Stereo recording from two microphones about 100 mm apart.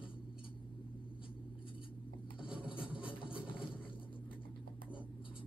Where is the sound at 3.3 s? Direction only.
10° right (ahead or behind).